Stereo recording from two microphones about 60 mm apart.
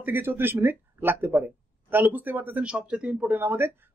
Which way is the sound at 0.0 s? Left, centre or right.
Right.